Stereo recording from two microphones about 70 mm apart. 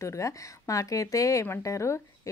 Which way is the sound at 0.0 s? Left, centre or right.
Left.